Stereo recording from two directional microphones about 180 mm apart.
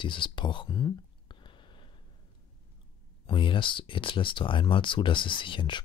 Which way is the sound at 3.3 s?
25° left (ahead or behind).